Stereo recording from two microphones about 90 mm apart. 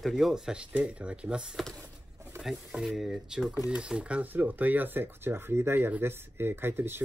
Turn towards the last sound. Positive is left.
turn(degrees=-25)  # may be behind; listen again after turning